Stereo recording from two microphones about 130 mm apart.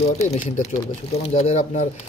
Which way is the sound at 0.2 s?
65° left (ahead or behind).